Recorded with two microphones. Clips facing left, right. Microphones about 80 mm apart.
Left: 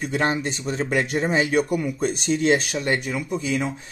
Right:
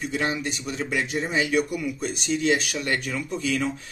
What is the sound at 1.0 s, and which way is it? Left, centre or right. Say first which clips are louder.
Speech: left 4 dB; left.